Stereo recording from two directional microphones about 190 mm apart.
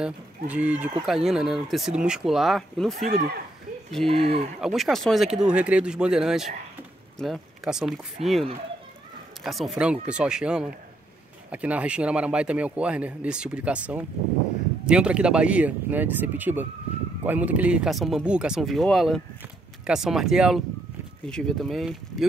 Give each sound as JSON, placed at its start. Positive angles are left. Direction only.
{"t": 0.0, "sound": "speech", "side_deg": -5}
{"t": 4.1, "sound": "speech", "side_deg": -30}
{"t": 4.6, "sound": "speech", "side_deg": 0}